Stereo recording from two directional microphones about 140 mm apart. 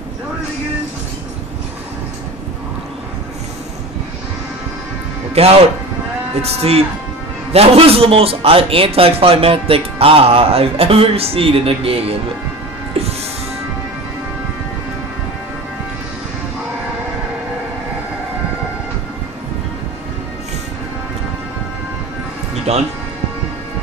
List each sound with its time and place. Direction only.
5.3 s a man's voice: 45° right (ahead or behind)
22.7 s a man's voice: 50° right (ahead or behind)